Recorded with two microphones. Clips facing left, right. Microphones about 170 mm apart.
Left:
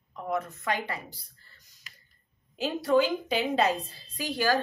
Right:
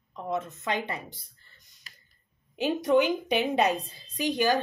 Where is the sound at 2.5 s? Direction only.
20° right (ahead or behind).